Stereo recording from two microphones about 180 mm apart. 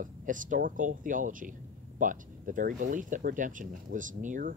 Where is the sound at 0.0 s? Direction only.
45° right (ahead or behind).